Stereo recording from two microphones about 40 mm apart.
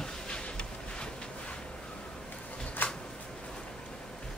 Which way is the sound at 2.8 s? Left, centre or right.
Left.